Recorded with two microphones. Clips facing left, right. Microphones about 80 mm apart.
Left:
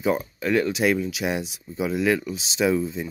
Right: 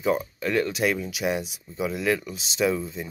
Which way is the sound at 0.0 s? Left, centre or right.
Centre.